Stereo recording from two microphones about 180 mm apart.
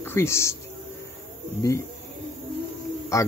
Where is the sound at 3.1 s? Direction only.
15° left (ahead or behind).